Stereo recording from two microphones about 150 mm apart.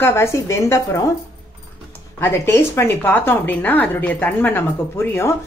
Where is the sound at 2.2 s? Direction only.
15° left (ahead or behind).